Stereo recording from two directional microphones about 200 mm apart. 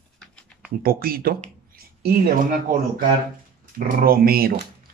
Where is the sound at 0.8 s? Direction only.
45° right (ahead or behind).